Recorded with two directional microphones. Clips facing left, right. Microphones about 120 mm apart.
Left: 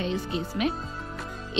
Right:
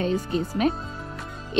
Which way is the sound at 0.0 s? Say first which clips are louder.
Right 4 dB; 40° right (ahead or behind).